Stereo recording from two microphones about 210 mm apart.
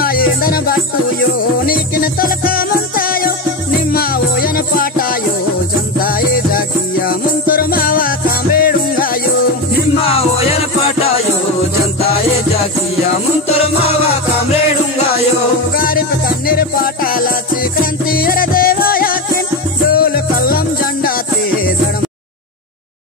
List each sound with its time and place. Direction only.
0.0 s music: 45° left (ahead or behind)
15.7 s music: 45° left (ahead or behind)